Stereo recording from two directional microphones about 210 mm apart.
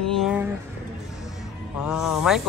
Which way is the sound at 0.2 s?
5° right (ahead or behind).